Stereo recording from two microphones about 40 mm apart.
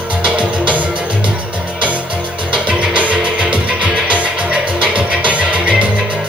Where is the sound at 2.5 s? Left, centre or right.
Right.